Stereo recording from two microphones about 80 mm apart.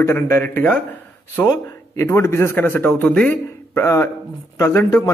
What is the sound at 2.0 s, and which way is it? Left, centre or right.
A man's voice, left.